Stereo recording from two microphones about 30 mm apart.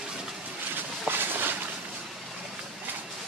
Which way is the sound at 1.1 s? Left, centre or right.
Right.